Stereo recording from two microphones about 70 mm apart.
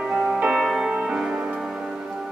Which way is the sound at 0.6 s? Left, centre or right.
Centre.